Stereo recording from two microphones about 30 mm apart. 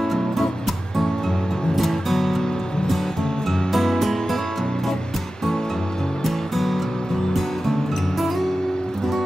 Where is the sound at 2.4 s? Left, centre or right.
Left.